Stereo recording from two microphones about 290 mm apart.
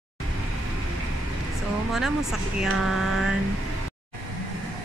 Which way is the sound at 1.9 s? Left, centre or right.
Centre.